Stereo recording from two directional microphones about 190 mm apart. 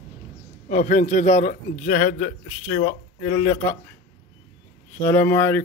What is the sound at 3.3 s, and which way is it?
Speech, 15° left (ahead or behind).